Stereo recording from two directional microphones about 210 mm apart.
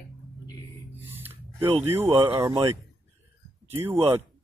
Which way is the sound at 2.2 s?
20° right (ahead or behind).